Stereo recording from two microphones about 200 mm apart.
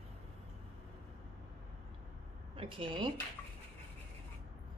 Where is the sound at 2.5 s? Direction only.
25° right (ahead or behind).